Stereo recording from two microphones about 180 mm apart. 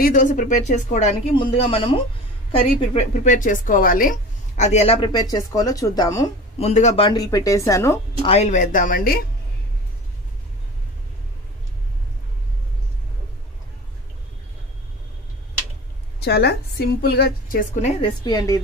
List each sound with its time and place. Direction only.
0.0 s speech: 45° left (ahead or behind)
1.3 s speech: 30° left (ahead or behind)
6.6 s speech: 40° left (ahead or behind)
7.1 s speech: 20° left (ahead or behind)
8.3 s speech: 40° left (ahead or behind)
16.2 s a woman's voice: 65° left (ahead or behind)
18.0 s a woman's voice: 20° left (ahead or behind)